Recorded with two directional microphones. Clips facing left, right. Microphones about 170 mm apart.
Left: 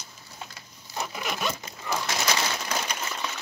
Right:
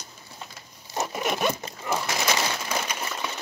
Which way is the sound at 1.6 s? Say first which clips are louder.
Right 3 dB; 25° right (ahead or behind).